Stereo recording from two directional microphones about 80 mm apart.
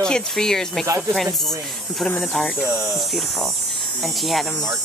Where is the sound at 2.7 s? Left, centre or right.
Right.